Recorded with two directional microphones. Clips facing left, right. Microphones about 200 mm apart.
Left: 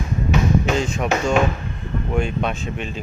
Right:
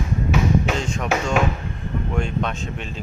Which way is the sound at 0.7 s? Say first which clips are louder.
Left 3 dB; 5° left (ahead or behind).